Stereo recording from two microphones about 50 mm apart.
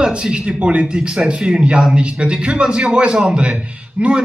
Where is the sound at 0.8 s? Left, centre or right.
Centre.